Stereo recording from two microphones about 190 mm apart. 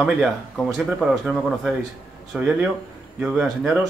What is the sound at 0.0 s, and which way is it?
Speech, centre (ahead or behind).